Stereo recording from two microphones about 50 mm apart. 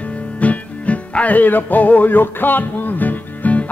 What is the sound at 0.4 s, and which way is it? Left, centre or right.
Music, left.